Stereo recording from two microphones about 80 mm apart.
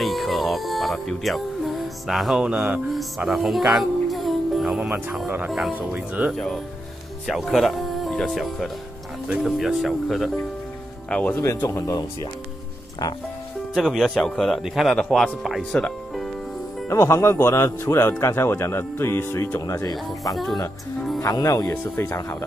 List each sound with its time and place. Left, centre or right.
0.0 s music: centre
2.0 s speech: centre
3.3 s music: centre
4.7 s speech: centre
6.3 s speech: centre
11.1 s speech: centre
11.4 s speech: left
13.0 s speech: left
13.7 s speech: centre
15.7 s music: centre
16.9 s speech: left
19.6 s speech: left
21.6 s speech: left